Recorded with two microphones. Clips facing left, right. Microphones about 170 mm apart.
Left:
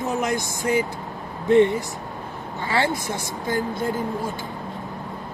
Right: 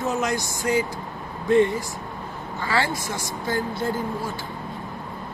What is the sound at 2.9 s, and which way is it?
Speech, 60° left (ahead or behind).